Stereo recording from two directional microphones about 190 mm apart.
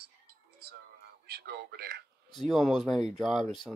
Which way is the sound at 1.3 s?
55° right (ahead or behind).